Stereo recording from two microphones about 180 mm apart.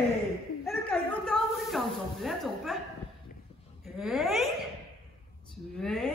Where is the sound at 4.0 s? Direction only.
Centre (ahead or behind).